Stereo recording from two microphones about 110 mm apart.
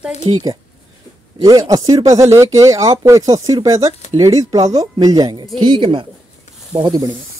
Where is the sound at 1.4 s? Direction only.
35° right (ahead or behind).